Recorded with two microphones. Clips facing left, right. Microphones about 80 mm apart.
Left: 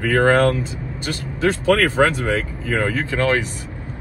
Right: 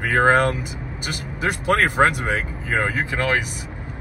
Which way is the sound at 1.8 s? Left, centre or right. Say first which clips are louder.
Left 1 dB; centre.